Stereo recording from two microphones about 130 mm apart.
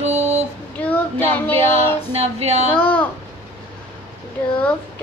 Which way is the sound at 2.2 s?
55° right (ahead or behind).